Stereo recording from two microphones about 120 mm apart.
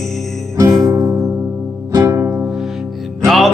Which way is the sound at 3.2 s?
Centre (ahead or behind).